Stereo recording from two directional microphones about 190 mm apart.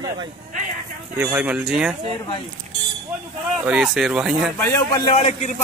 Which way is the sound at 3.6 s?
5° right (ahead or behind).